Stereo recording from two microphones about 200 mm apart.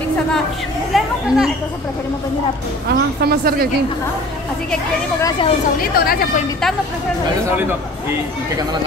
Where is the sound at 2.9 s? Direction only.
50° right (ahead or behind).